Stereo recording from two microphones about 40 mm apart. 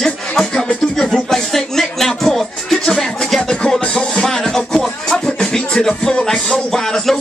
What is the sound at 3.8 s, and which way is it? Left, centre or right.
Music, left.